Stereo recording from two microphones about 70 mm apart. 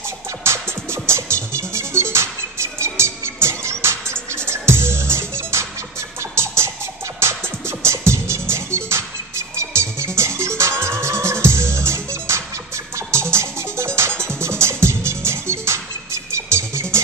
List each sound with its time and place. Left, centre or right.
0.5 s music: right